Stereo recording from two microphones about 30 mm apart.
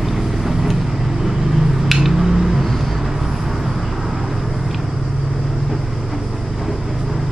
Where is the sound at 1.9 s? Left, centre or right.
Centre.